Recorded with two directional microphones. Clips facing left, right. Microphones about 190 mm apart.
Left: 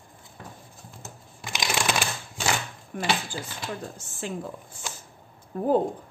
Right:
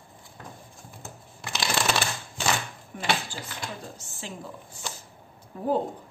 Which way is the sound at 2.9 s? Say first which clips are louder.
Left 5 dB; 55° left (ahead or behind).